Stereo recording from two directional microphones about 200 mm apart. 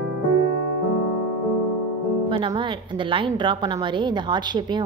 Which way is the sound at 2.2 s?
25° right (ahead or behind).